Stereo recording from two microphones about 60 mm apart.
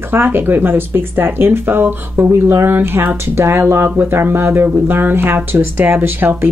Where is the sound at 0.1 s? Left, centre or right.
Right.